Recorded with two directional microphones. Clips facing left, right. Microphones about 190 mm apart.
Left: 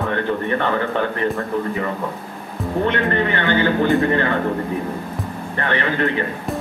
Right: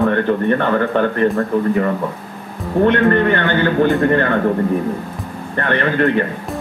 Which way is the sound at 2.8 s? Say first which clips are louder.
Right 7 dB; 55° right (ahead or behind).